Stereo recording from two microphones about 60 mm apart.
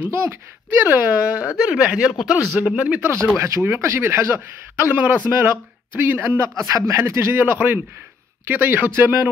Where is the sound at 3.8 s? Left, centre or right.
Right.